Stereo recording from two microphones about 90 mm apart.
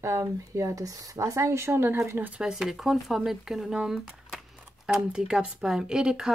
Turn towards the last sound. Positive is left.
turn(degrees=-10)  # may be behind; listen again after turning